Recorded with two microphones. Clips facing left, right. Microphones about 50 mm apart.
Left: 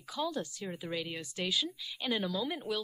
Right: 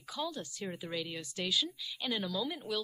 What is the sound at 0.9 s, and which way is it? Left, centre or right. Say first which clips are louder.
Speech: left 2 dB; centre.